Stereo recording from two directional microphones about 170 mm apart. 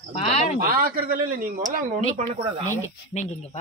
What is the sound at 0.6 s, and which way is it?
Speech, 60° right (ahead or behind).